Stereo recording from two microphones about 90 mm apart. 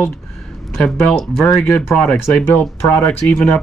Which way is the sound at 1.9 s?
15° left (ahead or behind).